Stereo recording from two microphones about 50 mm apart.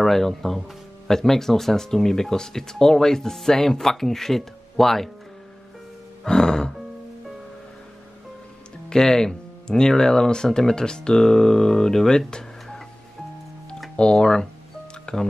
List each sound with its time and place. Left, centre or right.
0.0 s speech: centre
6.2 s music: centre
8.8 s speech: centre
13.9 s speech: centre